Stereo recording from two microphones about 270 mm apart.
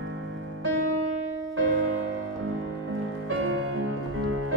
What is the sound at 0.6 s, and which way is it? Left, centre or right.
Music, right.